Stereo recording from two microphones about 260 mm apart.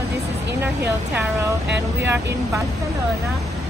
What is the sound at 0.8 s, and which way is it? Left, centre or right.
Speech, centre.